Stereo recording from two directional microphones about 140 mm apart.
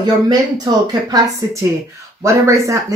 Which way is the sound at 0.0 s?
30° right (ahead or behind).